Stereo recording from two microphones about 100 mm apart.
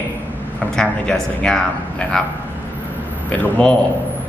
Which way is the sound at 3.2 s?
15° left (ahead or behind).